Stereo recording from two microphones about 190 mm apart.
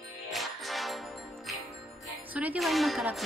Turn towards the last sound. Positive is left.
turn(degrees=0)  # may be behind; listen again after turning